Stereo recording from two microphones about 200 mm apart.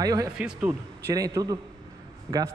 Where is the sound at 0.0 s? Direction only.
20° right (ahead or behind).